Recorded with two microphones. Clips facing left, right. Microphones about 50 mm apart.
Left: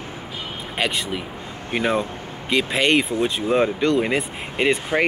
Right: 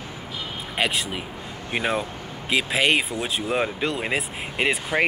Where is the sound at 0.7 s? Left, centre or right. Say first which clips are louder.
Left 1 dB; centre.